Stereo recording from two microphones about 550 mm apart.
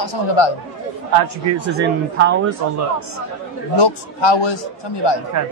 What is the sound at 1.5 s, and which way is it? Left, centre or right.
Speech, right.